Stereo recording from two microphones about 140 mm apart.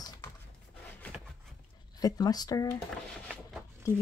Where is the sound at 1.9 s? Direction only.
30° left (ahead or behind).